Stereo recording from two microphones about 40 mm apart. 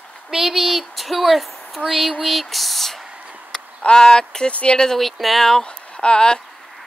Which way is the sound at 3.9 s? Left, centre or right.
Centre.